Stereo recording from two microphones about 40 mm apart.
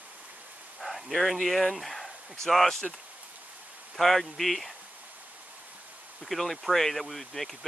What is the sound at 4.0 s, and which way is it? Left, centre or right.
Speech, centre.